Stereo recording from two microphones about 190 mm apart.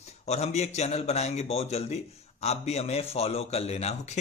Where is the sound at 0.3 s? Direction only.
35° left (ahead or behind).